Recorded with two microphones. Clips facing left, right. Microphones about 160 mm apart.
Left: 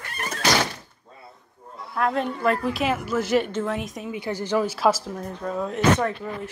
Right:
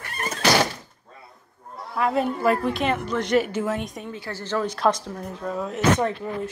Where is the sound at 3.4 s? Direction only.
10° right (ahead or behind).